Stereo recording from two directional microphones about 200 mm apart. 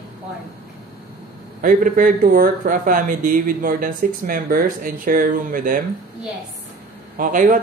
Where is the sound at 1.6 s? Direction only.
45° right (ahead or behind).